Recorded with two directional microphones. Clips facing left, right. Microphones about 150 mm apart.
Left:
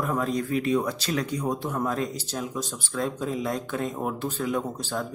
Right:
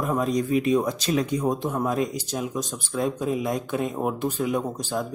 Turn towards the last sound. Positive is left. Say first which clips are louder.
# right 2 dB
turn(degrees=-15)  # may be behind; listen again after turning